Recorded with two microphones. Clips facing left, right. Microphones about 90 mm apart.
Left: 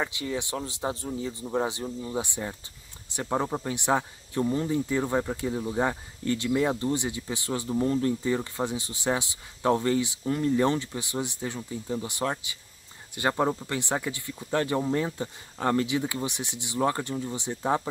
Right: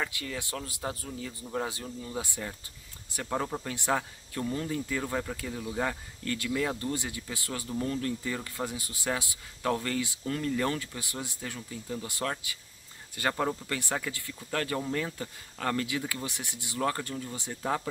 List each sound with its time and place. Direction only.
0.0 s speech: 20° left (ahead or behind)